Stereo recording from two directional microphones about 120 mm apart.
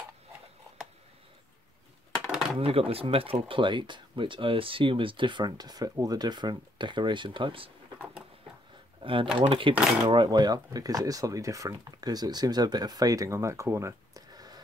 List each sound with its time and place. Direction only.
2.6 s speech: 55° right (ahead or behind)
9.0 s speech: 45° right (ahead or behind)